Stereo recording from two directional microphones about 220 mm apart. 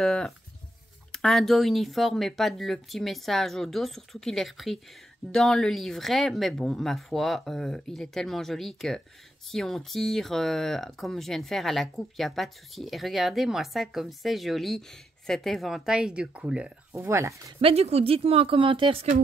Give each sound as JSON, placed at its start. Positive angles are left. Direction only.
{"t": 0.0, "sound": "speech", "side_deg": 5}
{"t": 17.6, "sound": "speech", "side_deg": -25}